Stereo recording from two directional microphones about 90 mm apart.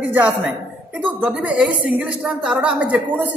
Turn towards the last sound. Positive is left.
turn(degrees=-15)  # may be behind; listen again after turning